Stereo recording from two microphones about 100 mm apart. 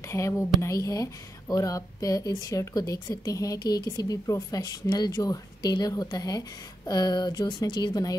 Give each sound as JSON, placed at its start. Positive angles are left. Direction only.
{"t": 0.1, "sound": "a woman's voice", "side_deg": 25}